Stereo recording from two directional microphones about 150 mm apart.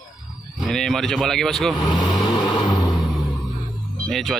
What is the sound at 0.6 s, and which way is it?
Speech, 5° left (ahead or behind).